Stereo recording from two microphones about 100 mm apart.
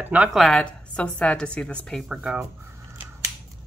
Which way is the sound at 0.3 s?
Centre (ahead or behind).